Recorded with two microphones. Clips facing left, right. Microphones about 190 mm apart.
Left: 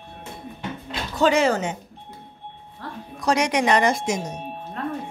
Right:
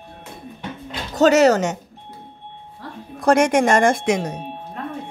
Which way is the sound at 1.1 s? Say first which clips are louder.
Right 5 dB; 40° right (ahead or behind).